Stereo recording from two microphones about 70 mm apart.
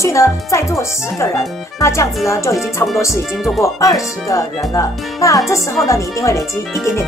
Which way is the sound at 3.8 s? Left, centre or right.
Left.